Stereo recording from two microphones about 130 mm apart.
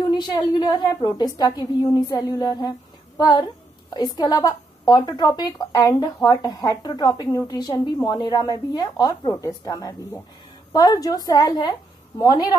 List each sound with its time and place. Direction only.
0.1 s a woman's voice: 35° left (ahead or behind)
3.9 s a woman's voice: 30° left (ahead or behind)